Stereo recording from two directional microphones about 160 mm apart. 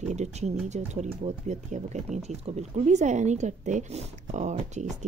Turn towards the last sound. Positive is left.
turn(degrees=-45)  # may be behind; listen again after turning